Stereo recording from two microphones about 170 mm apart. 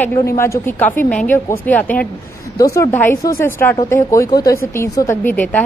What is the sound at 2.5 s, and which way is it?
A woman's voice, 20° left (ahead or behind).